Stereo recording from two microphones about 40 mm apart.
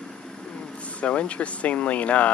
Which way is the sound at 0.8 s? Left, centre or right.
Left.